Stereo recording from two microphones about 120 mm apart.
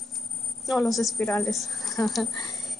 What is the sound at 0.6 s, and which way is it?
A woman's voice, centre (ahead or behind).